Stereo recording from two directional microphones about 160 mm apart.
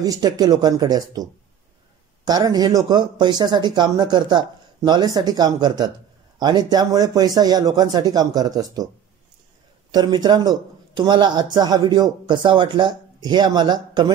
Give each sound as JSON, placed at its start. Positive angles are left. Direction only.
{"t": 0.0, "sound": "a man's voice", "side_deg": -25}
{"t": 9.8, "sound": "a man's voice", "side_deg": -25}